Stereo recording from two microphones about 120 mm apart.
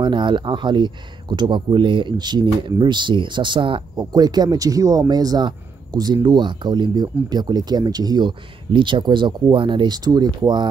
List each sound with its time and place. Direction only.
0.0 s speech: 40° right (ahead or behind)